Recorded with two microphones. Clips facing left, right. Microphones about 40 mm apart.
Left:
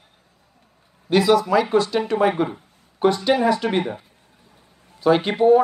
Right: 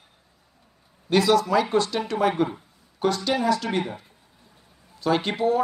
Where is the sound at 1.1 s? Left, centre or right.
Centre; by 3.8 s left.